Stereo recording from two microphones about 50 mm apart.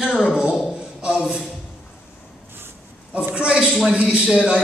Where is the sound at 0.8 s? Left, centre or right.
Centre.